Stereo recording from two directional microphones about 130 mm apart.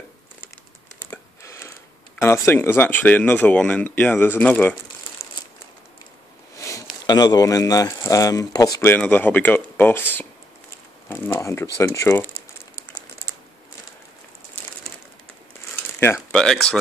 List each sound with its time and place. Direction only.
1.1 s a sound: 20° left (ahead or behind)
2.1 s speech: 20° left (ahead or behind)
5.2 s crumpling: 20° left (ahead or behind)
6.6 s speech: 25° left (ahead or behind)
8.8 s speech: 15° left (ahead or behind)
16.0 s a sound: 20° left (ahead or behind)
16.3 s speech: 5° left (ahead or behind)